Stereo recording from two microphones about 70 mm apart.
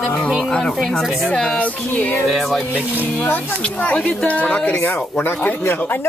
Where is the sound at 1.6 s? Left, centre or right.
Left.